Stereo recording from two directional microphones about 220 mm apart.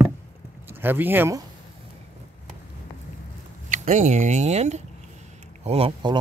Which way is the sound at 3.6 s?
35° right (ahead or behind).